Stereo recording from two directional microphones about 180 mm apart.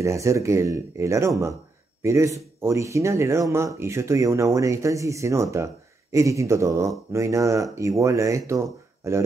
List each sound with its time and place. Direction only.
0.0 s speech: 15° right (ahead or behind)